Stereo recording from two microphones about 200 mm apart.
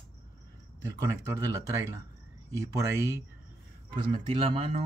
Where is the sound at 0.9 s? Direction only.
15° right (ahead or behind).